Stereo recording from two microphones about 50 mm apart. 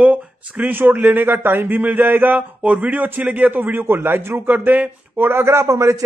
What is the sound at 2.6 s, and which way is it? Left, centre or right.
A man's voice, right.